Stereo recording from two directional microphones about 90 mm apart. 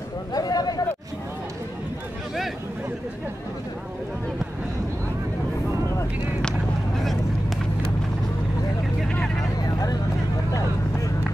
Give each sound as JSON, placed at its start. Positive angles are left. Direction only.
{"t": 0.3, "sound": "a sound", "side_deg": 45}
{"t": 7.0, "sound": "vehicle", "side_deg": 0}
{"t": 9.0, "sound": "vehicle", "side_deg": 10}
{"t": 9.6, "sound": "vehicle", "side_deg": 45}